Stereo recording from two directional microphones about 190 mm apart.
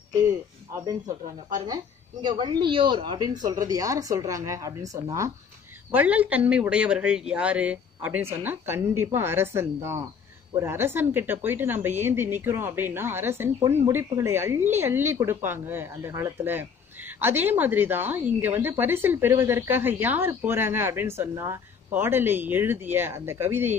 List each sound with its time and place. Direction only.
0.8 s a woman's voice: 20° right (ahead or behind)